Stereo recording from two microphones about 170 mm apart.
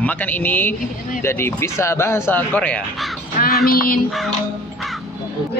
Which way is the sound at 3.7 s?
60° left (ahead or behind).